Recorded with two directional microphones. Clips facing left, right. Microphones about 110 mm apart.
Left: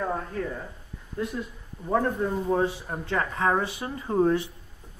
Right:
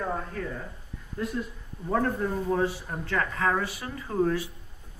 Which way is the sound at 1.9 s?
15° left (ahead or behind).